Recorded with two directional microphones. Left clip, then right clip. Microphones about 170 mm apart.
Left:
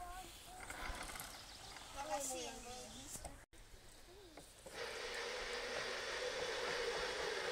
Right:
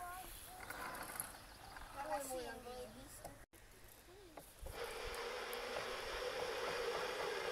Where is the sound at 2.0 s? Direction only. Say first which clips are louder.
Even; centre (ahead or behind).